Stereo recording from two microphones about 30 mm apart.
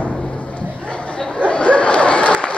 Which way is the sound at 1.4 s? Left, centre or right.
Left.